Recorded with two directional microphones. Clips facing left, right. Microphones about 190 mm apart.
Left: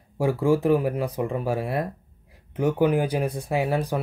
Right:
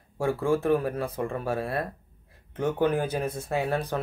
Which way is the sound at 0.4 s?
15° left (ahead or behind).